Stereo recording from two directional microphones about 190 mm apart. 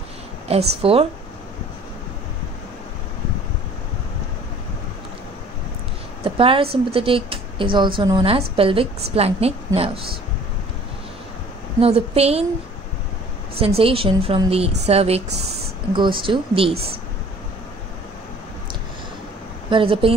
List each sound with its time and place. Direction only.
0.5 s a woman's voice: 30° right (ahead or behind)
6.2 s a woman's voice: 30° right (ahead or behind)
11.8 s a woman's voice: 30° right (ahead or behind)
13.6 s a woman's voice: 30° right (ahead or behind)
19.7 s a woman's voice: 30° right (ahead or behind)